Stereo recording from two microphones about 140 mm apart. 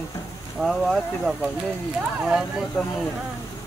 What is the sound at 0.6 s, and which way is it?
Speech, centre (ahead or behind).